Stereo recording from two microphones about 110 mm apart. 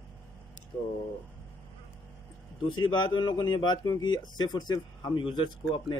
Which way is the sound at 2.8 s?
45° left (ahead or behind).